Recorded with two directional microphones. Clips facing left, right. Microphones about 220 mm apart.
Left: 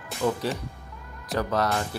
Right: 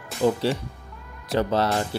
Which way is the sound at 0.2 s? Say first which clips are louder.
Right 5 dB; 30° right (ahead or behind).